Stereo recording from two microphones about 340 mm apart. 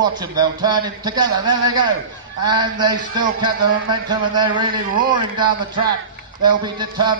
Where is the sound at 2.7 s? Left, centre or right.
Centre.